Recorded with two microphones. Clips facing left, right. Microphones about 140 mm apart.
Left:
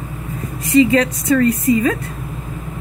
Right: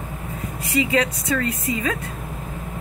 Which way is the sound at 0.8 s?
5° right (ahead or behind).